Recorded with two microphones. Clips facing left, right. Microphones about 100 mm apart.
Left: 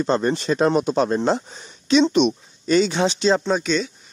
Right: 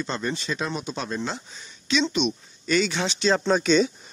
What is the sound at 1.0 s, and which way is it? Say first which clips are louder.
Speech: left 10 dB; 45° left (ahead or behind).